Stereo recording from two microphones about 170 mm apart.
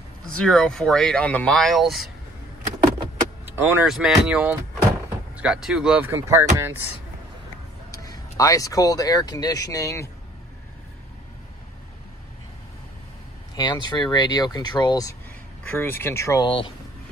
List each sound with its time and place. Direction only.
0.4 s speech: 5° left (ahead or behind)
3.4 s speech: 10° right (ahead or behind)
7.9 s speech: 20° left (ahead or behind)
13.6 s speech: 25° left (ahead or behind)
16.4 s speech: 30° left (ahead or behind)